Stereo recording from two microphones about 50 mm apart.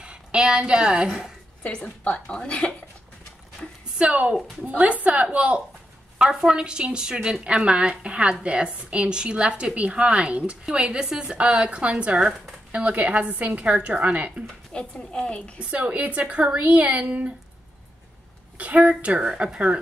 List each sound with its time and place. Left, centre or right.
0.0 s a woman's voice: centre
1.6 s a woman's voice: left
4.0 s a woman's voice: right
14.7 s a woman's voice: centre
15.6 s a woman's voice: right
18.6 s a woman's voice: right